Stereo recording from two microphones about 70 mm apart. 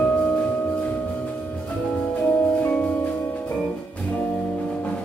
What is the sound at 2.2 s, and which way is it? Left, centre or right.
Music, centre.